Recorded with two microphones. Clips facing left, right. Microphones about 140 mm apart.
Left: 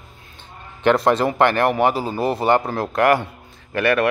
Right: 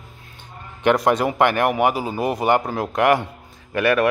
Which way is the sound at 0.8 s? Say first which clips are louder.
Left 1 dB; 15° right (ahead or behind).